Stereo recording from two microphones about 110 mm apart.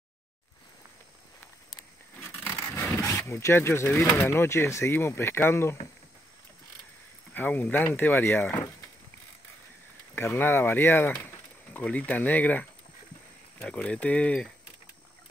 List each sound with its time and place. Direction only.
2.2 s scrape: 20° left (ahead or behind)
3.0 s speech: 25° left (ahead or behind)
7.3 s speech: 15° left (ahead or behind)
10.1 s speech: 20° left (ahead or behind)